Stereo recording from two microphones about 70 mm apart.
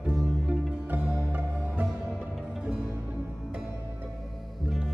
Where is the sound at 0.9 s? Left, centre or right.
Centre.